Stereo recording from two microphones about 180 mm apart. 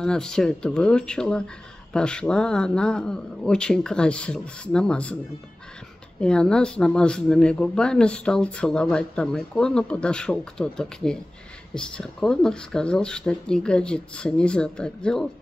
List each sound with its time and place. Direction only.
0.0 s speech: 5° left (ahead or behind)
6.2 s speech: 5° left (ahead or behind)